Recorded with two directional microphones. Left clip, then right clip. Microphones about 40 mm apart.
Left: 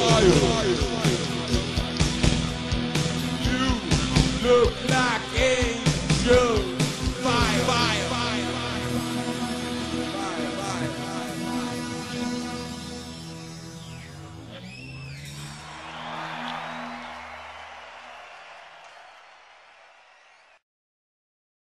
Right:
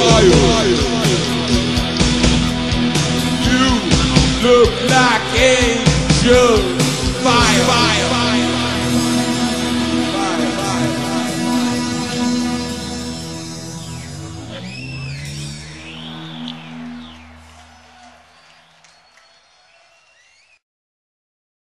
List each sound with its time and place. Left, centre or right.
0.0 s music: right
16.2 s music: centre